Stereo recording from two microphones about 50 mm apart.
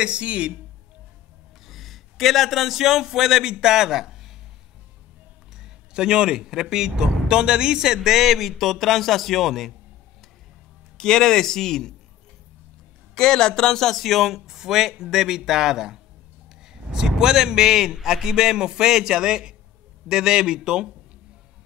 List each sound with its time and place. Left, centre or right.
0.0 s speech: right
1.7 s a man's voice: centre
5.6 s a man's voice: centre
11.0 s speech: centre
13.1 s speech: centre